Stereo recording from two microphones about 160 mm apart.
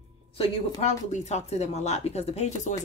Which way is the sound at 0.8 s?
45° left (ahead or behind).